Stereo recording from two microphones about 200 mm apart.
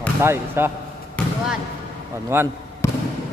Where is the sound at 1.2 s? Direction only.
5° left (ahead or behind).